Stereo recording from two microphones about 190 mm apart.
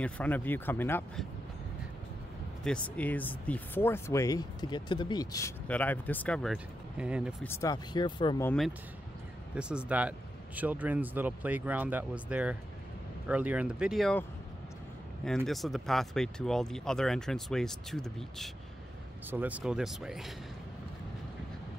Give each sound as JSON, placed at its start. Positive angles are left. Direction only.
{"t": 0.0, "sound": "speech", "side_deg": 10}
{"t": 2.6, "sound": "speech", "side_deg": 5}
{"t": 7.4, "sound": "speech", "side_deg": 15}
{"t": 8.5, "sound": "speech", "side_deg": 0}
{"t": 15.2, "sound": "speech", "side_deg": 0}